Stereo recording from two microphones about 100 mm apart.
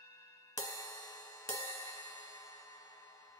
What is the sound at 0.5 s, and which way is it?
Music, 35° left (ahead or behind).